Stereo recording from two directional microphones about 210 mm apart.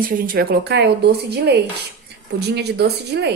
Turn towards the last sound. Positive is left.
turn(degrees=-50)  # may be behind; listen again after turning